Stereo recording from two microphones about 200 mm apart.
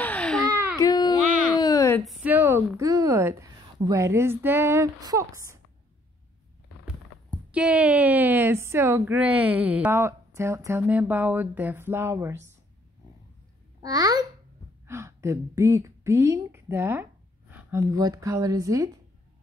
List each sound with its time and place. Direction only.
0.0 s baby cry: 5° left (ahead or behind)
0.5 s baby cry: 15° right (ahead or behind)
0.7 s baby cry: 20° left (ahead or behind)
1.6 s a sound: 20° left (ahead or behind)
2.0 s a woman's voice: 5° right (ahead or behind)
7.5 s a woman's voice: 5° right (ahead or behind)
13.7 s a child's voice: 20° right (ahead or behind)